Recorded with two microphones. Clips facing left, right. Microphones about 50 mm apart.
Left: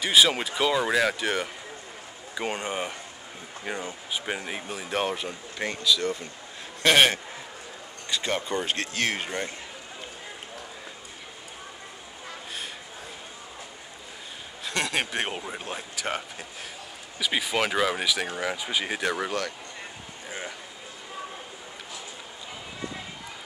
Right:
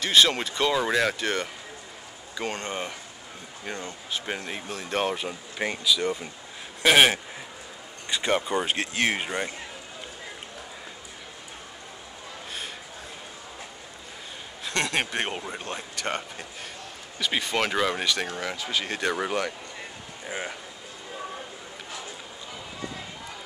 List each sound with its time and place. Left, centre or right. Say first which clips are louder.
0.0 s a man's voice: even; centre
8.1 s speech: right 3 dB; centre
14.6 s speech: right 1 dB; centre
18.9 s speech: right 1 dB; centre
20.2 s a sound: right 3 dB; centre